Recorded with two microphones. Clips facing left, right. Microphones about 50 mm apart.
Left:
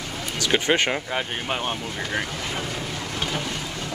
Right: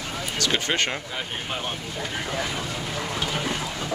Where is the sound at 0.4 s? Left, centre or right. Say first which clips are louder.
Left 4 dB; centre.